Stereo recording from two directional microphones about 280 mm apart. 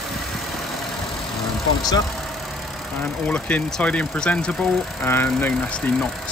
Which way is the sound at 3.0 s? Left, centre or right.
Centre.